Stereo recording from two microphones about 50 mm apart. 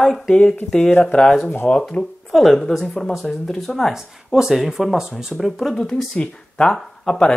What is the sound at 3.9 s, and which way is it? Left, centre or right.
Speech, centre.